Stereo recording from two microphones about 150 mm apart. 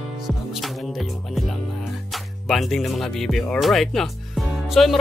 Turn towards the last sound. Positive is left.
turn(degrees=0)  # may be behind; listen again after turning